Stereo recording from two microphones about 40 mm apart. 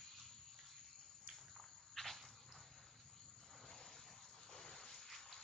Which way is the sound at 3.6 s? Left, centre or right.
Centre.